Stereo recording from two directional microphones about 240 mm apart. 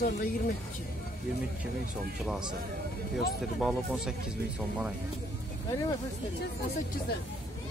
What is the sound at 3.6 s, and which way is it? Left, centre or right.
Speech, centre.